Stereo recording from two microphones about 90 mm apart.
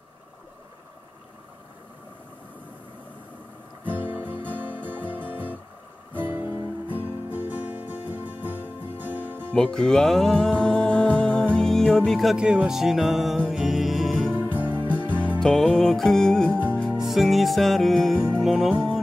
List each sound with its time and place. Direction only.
3.8 s music: 20° right (ahead or behind)
9.5 s music: 10° left (ahead or behind)
12.4 s music: 10° right (ahead or behind)
14.3 s music: 20° right (ahead or behind)
14.7 s music: 15° left (ahead or behind); by 18.9 s centre (ahead or behind)